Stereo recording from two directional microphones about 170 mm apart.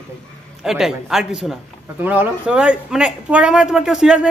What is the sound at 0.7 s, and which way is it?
A man's voice, centre (ahead or behind).